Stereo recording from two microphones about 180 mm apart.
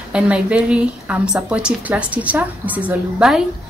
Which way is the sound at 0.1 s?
5° right (ahead or behind).